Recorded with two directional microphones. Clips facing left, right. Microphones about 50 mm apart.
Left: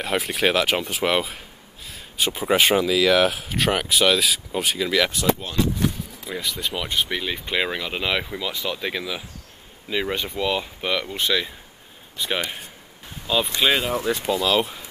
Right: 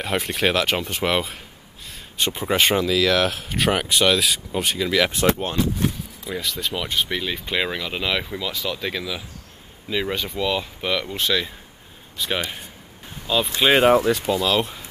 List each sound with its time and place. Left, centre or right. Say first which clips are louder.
0.0 s speech: even; centre
5.1 s speech: right 2 dB; right
6.2 s speech: right 1 dB; centre